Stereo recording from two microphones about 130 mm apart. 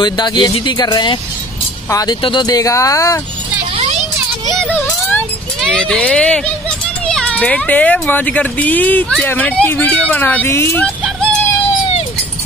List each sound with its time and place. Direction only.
0.0 s speech: 35° left (ahead or behind)
4.7 s music: 15° left (ahead or behind)
5.7 s speech: 5° left (ahead or behind)